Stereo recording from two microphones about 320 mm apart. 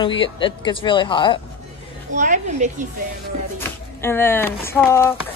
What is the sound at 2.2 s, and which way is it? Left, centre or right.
Speech, right.